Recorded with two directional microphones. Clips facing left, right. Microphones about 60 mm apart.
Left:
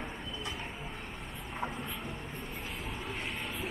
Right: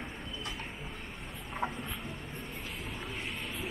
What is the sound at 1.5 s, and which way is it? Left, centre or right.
Vehicle, centre.